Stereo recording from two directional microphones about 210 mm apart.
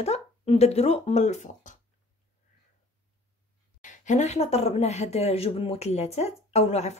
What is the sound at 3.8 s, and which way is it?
Speech, 35° left (ahead or behind).